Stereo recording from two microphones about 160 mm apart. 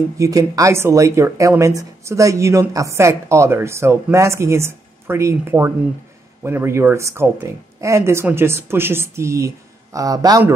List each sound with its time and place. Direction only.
0.2 s speech: 20° right (ahead or behind)